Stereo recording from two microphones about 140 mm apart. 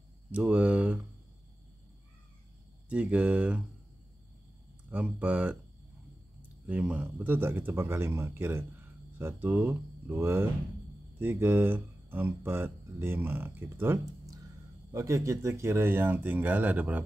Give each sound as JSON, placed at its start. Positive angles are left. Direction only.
{"t": 0.3, "sound": "a sound", "side_deg": -10}
{"t": 2.9, "sound": "speech", "side_deg": -10}
{"t": 4.8, "sound": "speech", "side_deg": -10}
{"t": 6.7, "sound": "speech", "side_deg": -10}